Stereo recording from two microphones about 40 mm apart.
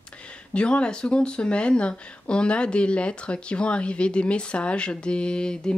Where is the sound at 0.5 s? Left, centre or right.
Left.